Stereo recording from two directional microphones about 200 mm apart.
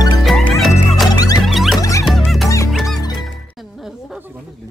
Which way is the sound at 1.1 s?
20° left (ahead or behind).